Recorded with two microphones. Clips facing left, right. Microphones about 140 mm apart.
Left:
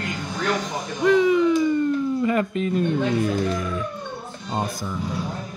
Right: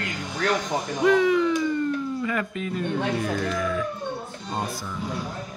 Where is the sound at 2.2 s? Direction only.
25° left (ahead or behind).